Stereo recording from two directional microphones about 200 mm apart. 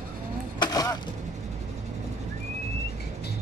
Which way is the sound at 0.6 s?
20° left (ahead or behind).